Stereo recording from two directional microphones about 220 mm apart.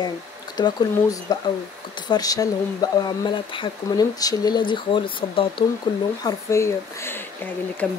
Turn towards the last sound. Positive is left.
turn(degrees=10)  # may be behind; listen again after turning